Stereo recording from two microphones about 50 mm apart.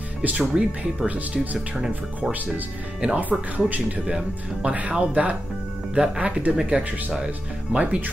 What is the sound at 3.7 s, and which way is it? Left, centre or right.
Speech, right.